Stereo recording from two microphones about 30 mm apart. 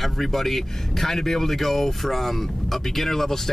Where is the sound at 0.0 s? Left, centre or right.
Centre.